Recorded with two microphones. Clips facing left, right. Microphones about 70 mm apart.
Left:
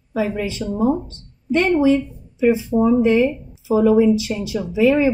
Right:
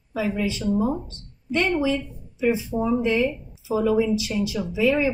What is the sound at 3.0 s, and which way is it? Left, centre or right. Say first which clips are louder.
A woman's voice: left 6 dB; left.